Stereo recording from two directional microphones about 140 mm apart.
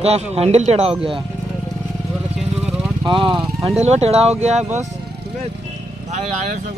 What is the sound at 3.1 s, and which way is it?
Speech, 35° right (ahead or behind).